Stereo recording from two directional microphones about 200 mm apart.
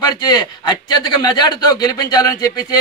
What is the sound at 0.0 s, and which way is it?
A man's voice, 20° left (ahead or behind).